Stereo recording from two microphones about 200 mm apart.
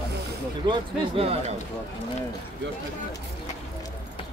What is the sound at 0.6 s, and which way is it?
Speech, 25° right (ahead or behind).